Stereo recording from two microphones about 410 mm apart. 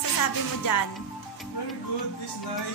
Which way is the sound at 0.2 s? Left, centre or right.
Left.